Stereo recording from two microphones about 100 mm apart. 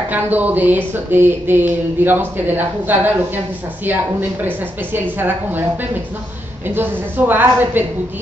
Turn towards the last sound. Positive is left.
turn(degrees=-20)  # may be behind; listen again after turning